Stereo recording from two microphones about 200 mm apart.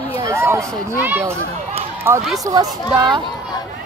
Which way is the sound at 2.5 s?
15° right (ahead or behind).